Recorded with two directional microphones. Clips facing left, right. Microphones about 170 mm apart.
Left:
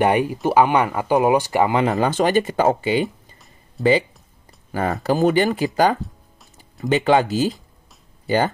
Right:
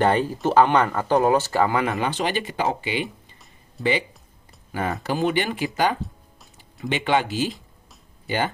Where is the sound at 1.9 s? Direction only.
45° left (ahead or behind).